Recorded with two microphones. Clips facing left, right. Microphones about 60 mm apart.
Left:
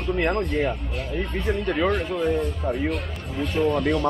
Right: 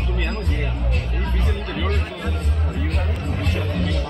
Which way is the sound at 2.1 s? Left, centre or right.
Right.